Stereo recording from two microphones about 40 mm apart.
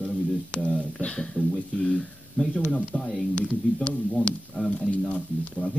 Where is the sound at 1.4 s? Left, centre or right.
Left.